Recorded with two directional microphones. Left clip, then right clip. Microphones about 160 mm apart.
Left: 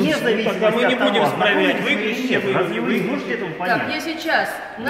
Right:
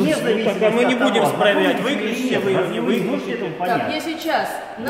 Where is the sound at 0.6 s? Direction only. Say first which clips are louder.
Even; 65° right (ahead or behind).